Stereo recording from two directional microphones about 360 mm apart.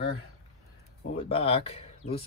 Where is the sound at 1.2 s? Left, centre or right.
Centre.